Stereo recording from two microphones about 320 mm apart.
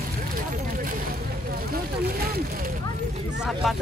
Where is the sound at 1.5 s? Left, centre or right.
Right.